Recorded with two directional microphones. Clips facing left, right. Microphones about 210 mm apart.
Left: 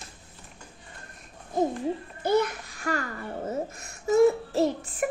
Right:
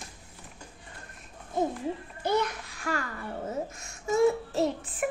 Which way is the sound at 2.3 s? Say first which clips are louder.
Left 4 dB; centre (ahead or behind).